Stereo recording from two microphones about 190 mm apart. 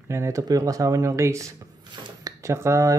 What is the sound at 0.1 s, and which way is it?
Speech, 15° right (ahead or behind).